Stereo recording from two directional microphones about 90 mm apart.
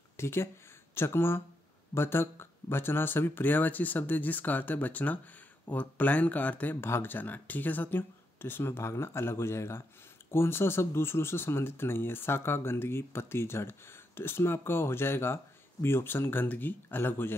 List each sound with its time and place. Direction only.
0.2 s speech: 30° left (ahead or behind)